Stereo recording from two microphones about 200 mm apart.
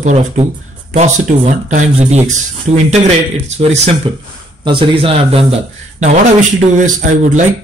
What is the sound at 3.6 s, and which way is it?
Speech, 30° right (ahead or behind).